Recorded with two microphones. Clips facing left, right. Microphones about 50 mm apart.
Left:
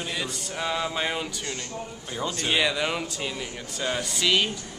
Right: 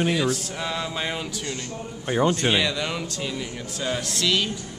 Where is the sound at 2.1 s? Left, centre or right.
Right.